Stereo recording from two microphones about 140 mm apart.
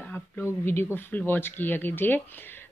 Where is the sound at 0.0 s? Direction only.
10° left (ahead or behind).